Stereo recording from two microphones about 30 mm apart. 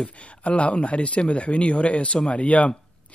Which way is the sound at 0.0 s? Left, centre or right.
Left.